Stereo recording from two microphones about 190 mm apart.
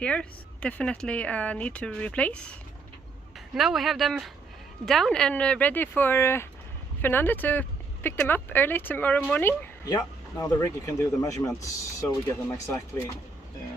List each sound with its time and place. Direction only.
0.0 s speech: 5° left (ahead or behind)
3.5 s speech: centre (ahead or behind)